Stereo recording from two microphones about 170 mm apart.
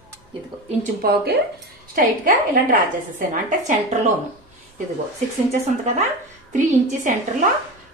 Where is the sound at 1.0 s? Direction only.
70° right (ahead or behind).